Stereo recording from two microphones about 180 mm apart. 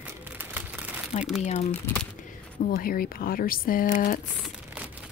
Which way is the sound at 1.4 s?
40° left (ahead or behind).